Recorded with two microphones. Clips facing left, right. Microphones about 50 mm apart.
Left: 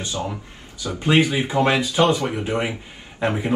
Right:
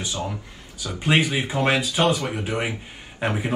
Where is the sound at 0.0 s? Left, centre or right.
Left.